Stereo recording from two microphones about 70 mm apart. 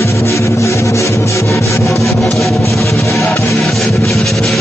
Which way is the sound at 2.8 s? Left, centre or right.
Left.